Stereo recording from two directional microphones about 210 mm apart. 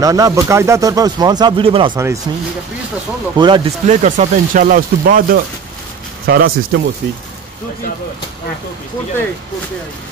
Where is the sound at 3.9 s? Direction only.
35° right (ahead or behind).